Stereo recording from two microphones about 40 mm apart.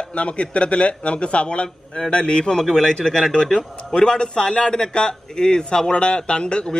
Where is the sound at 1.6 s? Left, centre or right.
Centre.